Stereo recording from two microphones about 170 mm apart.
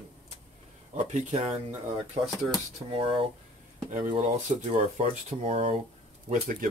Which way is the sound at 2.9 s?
30° right (ahead or behind).